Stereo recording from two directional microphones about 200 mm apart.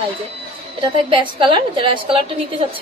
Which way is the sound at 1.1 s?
25° right (ahead or behind).